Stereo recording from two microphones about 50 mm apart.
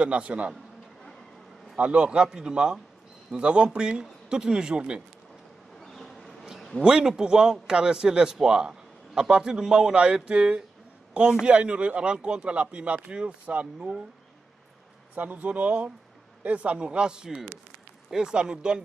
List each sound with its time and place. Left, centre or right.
0.0 s speech: right
1.8 s a man's voice: right
5.8 s vehicle: centre
6.8 s a man's voice: centre
15.1 s a man's voice: right